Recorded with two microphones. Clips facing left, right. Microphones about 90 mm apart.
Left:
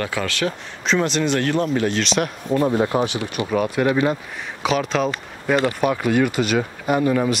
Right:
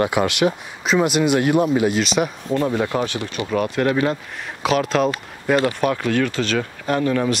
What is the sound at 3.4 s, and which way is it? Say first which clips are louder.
Speech: even; 5° left (ahead or behind).